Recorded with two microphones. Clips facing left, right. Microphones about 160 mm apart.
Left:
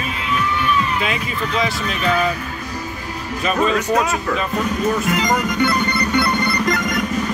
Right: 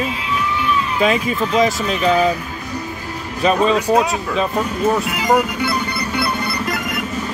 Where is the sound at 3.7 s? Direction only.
10° right (ahead or behind).